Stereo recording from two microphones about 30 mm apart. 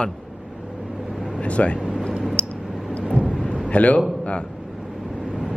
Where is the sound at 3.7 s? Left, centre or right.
Left.